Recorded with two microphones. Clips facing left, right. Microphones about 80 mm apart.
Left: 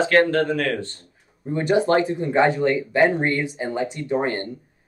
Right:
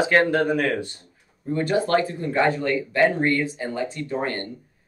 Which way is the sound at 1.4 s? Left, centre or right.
Centre.